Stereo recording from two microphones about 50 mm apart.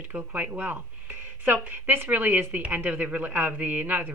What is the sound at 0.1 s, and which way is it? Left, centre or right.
A woman's voice, right.